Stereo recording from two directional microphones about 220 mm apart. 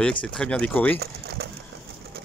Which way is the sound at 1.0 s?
50° right (ahead or behind).